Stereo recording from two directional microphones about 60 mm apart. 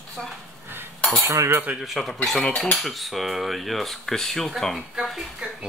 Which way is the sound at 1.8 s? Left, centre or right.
Centre.